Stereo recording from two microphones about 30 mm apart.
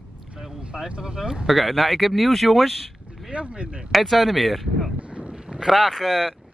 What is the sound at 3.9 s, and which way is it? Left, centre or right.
Speech, centre.